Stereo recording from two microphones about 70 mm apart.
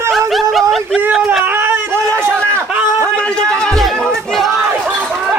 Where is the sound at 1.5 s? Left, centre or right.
Right.